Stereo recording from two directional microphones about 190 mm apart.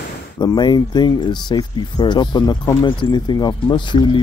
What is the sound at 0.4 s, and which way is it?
Speech, 25° left (ahead or behind).